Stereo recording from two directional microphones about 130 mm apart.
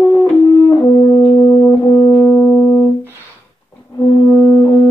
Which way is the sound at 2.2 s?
10° left (ahead or behind).